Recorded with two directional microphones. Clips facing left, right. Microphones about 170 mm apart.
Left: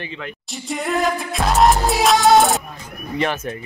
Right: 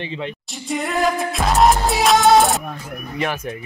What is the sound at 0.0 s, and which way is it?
Speech, 25° right (ahead or behind).